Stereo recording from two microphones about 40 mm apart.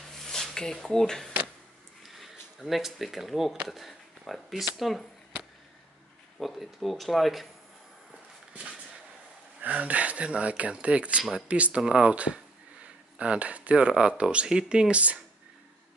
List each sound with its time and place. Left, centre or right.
0.1 s a sound: centre
0.8 s speech: centre
2.0 s speech: centre
9.6 s speech: right